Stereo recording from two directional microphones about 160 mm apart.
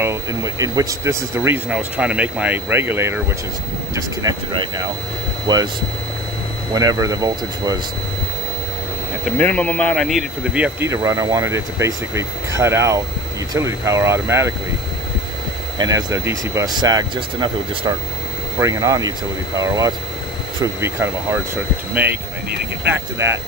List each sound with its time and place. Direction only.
0.0 s speech: 20° right (ahead or behind)
6.7 s speech: 20° right (ahead or behind)
9.4 s speech: 10° left (ahead or behind); by 14.5 s 15° right (ahead or behind)
15.8 s speech: 25° right (ahead or behind)
18.6 s speech: 20° right (ahead or behind)